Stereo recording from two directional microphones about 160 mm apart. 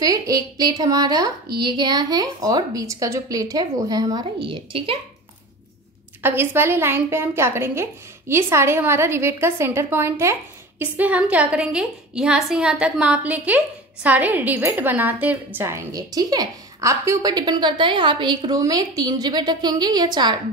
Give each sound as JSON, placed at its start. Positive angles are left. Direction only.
{"t": 0.0, "sound": "a woman's voice", "side_deg": -25}
{"t": 6.2, "sound": "a woman's voice", "side_deg": -15}